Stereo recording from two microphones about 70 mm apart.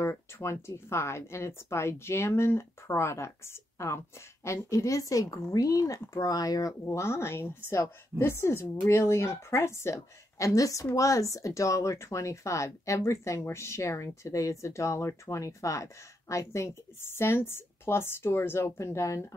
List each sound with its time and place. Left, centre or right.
0.0 s speech: left
6.9 s speech: left